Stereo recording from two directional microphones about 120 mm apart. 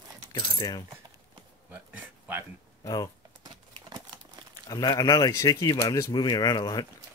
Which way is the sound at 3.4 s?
35° right (ahead or behind).